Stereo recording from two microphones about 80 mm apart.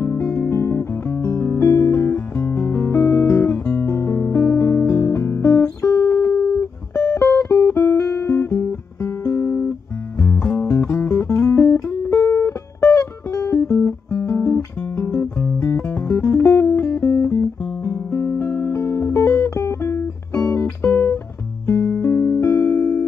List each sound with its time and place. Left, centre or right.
0.0 s guitar: left
4.8 s music: left
10.7 s guitar: left
21.6 s music: left